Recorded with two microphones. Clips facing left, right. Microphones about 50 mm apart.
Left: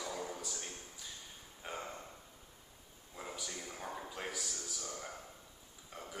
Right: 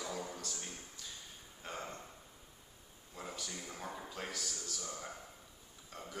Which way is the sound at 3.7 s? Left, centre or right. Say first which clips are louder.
Left 1 dB; centre.